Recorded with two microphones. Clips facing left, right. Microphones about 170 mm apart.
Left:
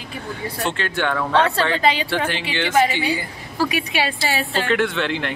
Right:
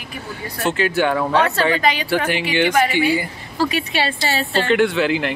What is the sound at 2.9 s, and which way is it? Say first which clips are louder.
Speech: right 5 dB; 15° right (ahead or behind).